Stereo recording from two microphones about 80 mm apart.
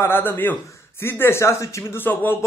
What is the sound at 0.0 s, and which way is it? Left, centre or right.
A man's voice, left.